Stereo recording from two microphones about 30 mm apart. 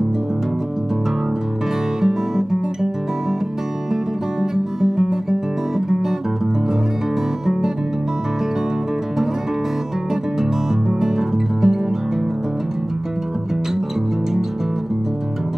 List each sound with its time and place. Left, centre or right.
2.0 s guitar: centre
3.9 s music: centre
10.9 s music: centre